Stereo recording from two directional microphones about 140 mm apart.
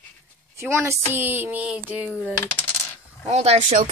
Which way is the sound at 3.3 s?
50° right (ahead or behind).